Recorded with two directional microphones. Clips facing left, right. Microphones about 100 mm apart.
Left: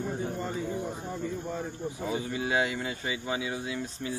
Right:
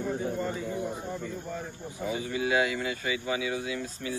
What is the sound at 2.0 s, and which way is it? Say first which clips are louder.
Speech: right 2 dB; 30° left (ahead or behind).